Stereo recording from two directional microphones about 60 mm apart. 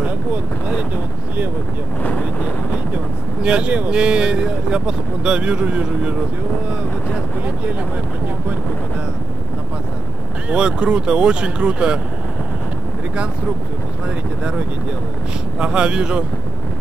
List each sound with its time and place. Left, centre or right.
3.4 s speech: right
10.5 s speech: centre
15.6 s speech: centre